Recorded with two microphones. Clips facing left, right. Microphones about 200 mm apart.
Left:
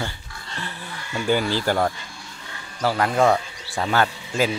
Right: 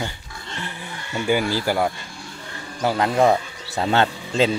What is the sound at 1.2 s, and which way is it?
Speech, 10° right (ahead or behind).